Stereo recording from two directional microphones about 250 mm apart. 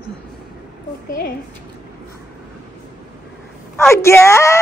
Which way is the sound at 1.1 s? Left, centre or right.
Left.